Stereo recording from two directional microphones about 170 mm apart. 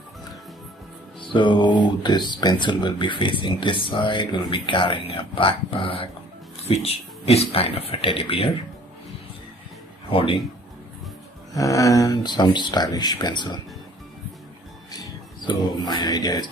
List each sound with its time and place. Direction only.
1.2 s music: 30° left (ahead or behind)
1.8 s speech: 25° left (ahead or behind)
10.1 s speech: 30° left (ahead or behind)
11.5 s speech: 20° left (ahead or behind)
14.9 s speech: 25° left (ahead or behind)